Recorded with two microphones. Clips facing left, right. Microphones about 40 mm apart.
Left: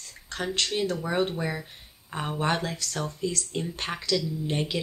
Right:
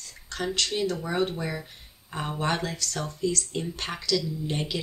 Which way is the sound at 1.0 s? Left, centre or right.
Centre.